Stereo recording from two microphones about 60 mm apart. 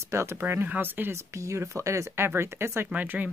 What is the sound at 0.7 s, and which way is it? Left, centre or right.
Speech, right.